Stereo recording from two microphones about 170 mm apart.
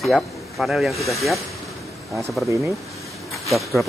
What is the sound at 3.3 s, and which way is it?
Speech, centre (ahead or behind).